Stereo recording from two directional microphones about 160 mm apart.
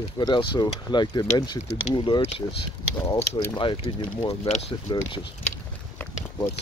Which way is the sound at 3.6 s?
30° left (ahead or behind).